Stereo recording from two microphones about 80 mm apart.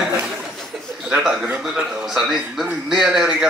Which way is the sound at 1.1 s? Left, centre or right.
Centre.